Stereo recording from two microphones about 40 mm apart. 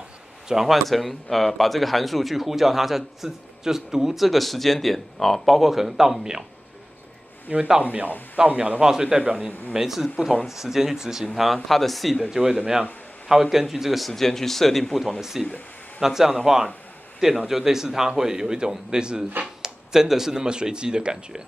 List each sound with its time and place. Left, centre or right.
0.5 s a man's voice: centre
0.7 s speech: centre
7.5 s a man's voice: right
8.8 s a man's voice: centre
9.8 s a man's voice: centre
12.2 s a man's voice: centre
15.1 s a man's voice: centre
17.5 s a man's voice: centre